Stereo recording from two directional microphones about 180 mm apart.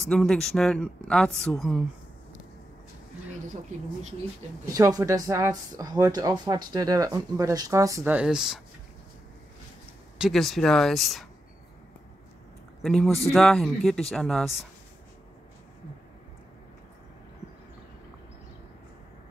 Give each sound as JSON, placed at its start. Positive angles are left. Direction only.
{"t": 0.1, "sound": "a woman's voice", "side_deg": 5}
{"t": 4.7, "sound": "speech", "side_deg": -20}
{"t": 10.1, "sound": "a woman's voice", "side_deg": 0}
{"t": 12.8, "sound": "a woman's voice", "side_deg": 0}